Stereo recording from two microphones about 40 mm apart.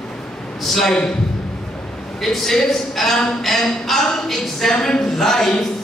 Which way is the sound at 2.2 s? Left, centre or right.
Centre.